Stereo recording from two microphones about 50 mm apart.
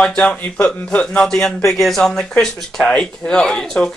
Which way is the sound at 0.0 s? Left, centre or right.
Centre.